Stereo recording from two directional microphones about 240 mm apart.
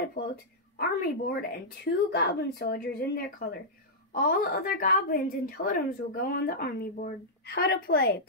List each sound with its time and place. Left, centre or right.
0.7 s a woman's voice: left